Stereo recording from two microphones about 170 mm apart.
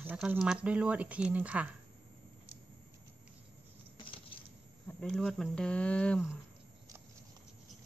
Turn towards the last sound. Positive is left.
turn(degrees=5)  # may be behind; listen again after turning